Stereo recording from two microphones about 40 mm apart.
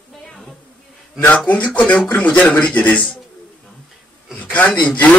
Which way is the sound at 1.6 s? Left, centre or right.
Left.